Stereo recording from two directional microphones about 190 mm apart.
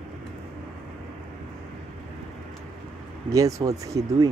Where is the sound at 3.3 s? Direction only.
20° right (ahead or behind).